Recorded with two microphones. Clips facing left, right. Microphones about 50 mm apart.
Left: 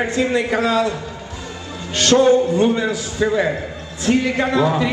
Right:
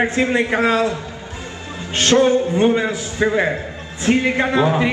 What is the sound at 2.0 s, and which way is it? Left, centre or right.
A man's voice, right.